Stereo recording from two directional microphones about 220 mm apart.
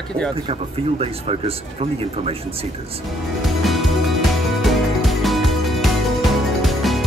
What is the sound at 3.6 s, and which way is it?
Music, centre (ahead or behind).